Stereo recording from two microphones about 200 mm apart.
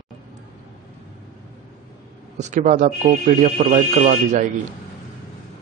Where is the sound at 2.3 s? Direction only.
35° right (ahead or behind).